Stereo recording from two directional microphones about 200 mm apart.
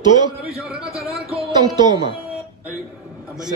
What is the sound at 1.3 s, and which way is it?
Speech, 20° right (ahead or behind).